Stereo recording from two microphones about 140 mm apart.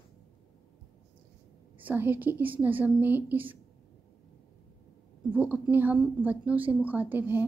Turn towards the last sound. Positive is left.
turn(degrees=-15)  # may be behind; listen again after turning